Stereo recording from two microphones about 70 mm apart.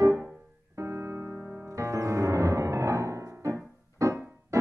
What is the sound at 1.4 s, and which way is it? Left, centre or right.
Music, centre.